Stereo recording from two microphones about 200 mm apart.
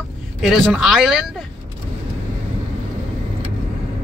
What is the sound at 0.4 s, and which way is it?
Speech, centre (ahead or behind).